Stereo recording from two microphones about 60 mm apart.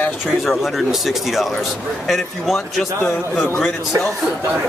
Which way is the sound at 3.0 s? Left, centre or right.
Left.